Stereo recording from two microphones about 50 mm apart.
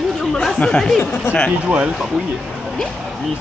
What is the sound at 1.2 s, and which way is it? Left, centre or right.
Speech, left.